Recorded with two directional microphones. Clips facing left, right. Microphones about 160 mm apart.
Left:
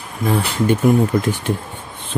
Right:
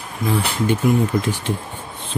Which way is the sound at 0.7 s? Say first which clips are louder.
Left 4 dB; 50° left (ahead or behind).